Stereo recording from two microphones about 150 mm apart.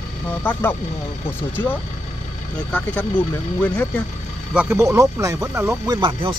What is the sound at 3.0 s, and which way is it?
Speech, 10° left (ahead or behind).